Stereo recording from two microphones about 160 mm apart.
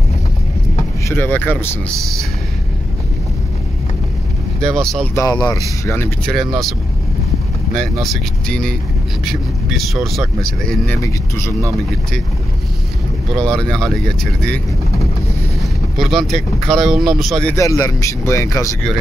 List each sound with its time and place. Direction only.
1.0 s speech: 15° left (ahead or behind)
4.7 s speech: 5° left (ahead or behind)
5.1 s speech: 25° left (ahead or behind)
5.9 s speech: 15° left (ahead or behind)
6.3 s speech: centre (ahead or behind)
7.7 s speech: centre (ahead or behind)
10.9 s speech: 15° left (ahead or behind)
13.3 s speech: 5° left (ahead or behind)
15.6 s speech: centre (ahead or behind)
17.6 s speech: 20° left (ahead or behind)